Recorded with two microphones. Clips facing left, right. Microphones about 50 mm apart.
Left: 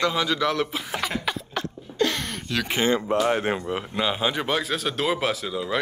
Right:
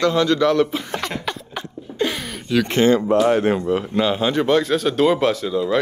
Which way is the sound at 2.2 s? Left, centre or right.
Centre.